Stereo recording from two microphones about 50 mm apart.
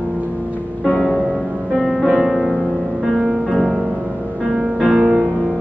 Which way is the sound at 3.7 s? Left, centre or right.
Right.